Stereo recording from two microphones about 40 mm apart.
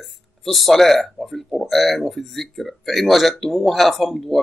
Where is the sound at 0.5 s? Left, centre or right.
Centre.